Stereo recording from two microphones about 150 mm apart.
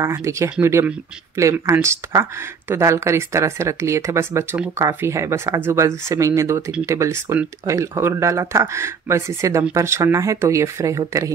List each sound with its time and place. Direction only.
0.0 s speech: 20° right (ahead or behind)